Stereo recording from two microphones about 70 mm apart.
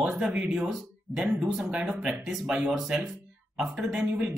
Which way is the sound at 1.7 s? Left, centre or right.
Right.